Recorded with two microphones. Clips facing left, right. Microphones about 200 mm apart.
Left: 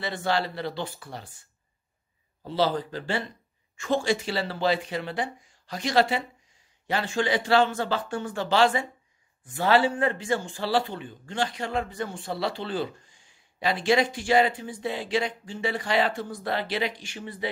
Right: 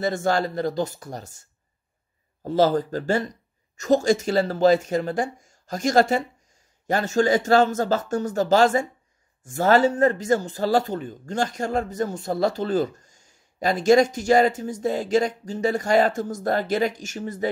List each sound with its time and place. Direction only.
0.0 s speech: 45° right (ahead or behind)